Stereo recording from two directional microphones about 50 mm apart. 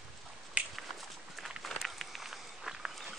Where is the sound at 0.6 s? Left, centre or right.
Right.